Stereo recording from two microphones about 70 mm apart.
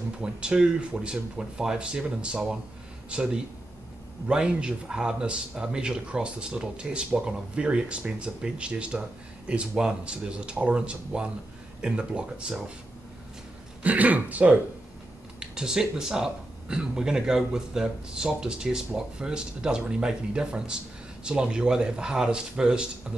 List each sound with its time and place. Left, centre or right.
0.2 s speech: centre
4.3 s speech: centre
13.8 s speech: right
15.5 s speech: centre